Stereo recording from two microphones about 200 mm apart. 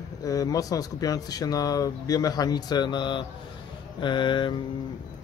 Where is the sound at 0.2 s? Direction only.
15° left (ahead or behind).